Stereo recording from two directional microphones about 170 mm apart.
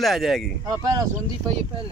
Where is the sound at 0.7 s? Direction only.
20° right (ahead or behind).